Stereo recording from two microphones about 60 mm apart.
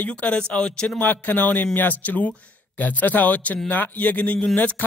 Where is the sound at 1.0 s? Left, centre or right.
Left.